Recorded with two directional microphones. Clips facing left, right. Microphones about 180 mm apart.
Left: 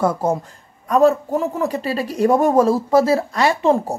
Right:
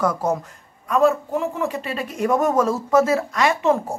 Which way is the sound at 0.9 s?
40° left (ahead or behind).